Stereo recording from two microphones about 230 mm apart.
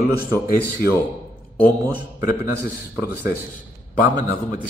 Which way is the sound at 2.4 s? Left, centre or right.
Centre.